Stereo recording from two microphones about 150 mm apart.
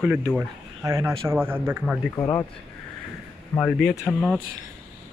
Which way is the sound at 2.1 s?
20° left (ahead or behind).